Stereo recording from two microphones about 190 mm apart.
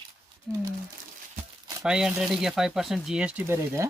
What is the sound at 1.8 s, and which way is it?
Speech, 5° right (ahead or behind).